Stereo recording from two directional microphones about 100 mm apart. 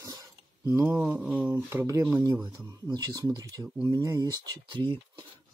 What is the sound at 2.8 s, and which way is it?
Speech, 45° right (ahead or behind).